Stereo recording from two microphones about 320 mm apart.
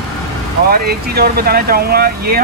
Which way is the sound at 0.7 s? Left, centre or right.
Right.